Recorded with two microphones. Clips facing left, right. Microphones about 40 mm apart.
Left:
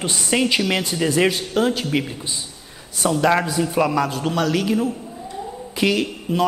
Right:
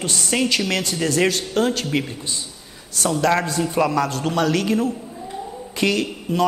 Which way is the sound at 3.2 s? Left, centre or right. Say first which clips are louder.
Left 1 dB; centre.